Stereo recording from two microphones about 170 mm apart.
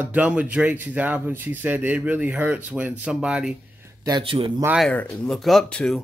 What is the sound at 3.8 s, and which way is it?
Speech, 25° right (ahead or behind).